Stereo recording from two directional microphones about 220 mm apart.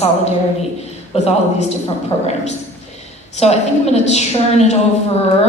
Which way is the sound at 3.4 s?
30° left (ahead or behind).